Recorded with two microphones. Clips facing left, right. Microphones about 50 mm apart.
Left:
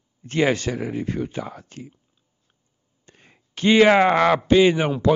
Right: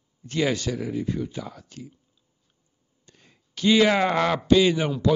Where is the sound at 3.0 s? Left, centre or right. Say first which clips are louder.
Left 4 dB; left.